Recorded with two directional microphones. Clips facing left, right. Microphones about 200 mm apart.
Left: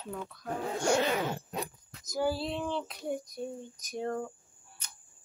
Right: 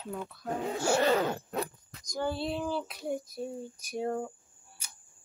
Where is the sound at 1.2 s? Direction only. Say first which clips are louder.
Right 3 dB; 15° left (ahead or behind).